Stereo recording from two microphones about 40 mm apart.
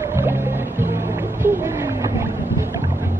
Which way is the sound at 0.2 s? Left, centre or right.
Right.